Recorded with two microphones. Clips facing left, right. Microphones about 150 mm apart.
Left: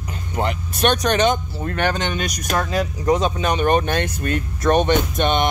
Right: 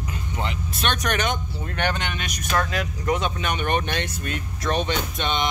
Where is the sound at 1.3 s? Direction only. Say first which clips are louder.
Left 6 dB; 45° left (ahead or behind).